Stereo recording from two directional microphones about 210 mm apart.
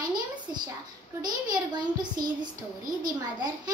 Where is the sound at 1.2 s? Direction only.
20° right (ahead or behind).